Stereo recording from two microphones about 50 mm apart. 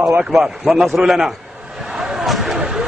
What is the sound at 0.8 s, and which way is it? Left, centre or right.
Speech, centre.